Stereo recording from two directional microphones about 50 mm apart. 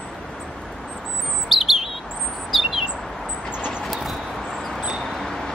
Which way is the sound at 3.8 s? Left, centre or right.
Centre.